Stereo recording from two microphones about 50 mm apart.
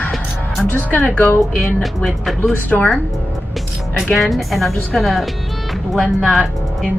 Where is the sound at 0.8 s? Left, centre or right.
Left.